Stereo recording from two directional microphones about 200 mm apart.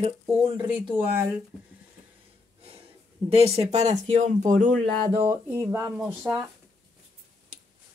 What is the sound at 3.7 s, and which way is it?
Speech, 35° right (ahead or behind).